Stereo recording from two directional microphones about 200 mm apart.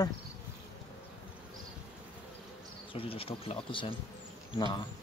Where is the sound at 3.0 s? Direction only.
30° left (ahead or behind).